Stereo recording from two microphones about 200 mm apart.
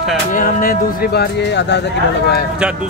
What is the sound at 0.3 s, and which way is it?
Speech, 40° left (ahead or behind).